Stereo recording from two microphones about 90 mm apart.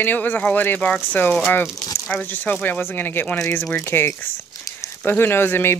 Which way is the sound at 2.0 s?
15° left (ahead or behind).